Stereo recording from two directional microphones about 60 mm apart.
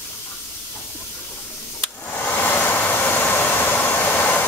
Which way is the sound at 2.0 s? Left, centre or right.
Left.